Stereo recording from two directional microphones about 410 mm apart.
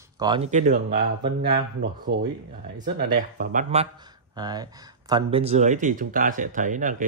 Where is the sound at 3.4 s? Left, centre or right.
Centre.